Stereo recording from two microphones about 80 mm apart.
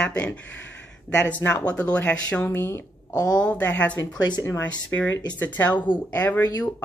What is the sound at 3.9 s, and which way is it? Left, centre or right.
Speech, left.